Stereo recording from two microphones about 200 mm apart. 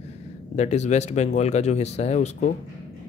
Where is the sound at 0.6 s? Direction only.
35° left (ahead or behind).